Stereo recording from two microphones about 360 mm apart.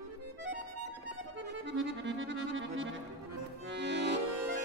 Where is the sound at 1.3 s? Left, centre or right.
Right.